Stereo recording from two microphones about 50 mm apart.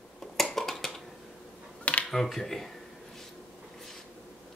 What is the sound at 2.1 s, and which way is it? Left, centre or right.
Speech, centre.